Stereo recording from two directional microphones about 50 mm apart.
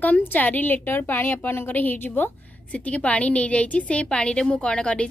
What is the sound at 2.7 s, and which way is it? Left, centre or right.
A woman's voice, left.